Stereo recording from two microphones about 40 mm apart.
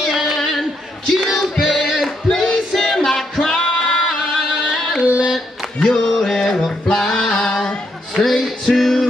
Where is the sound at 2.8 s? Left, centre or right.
Centre.